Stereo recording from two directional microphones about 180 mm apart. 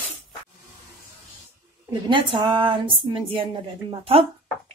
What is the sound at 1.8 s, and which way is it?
Speech, 25° right (ahead or behind).